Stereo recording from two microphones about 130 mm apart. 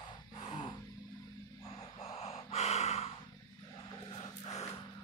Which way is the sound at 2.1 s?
50° left (ahead or behind).